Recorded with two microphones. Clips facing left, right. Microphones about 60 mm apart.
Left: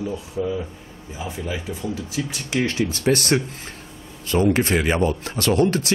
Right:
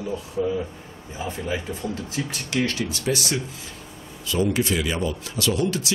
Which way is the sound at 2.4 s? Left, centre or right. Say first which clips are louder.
Left 3 dB; left.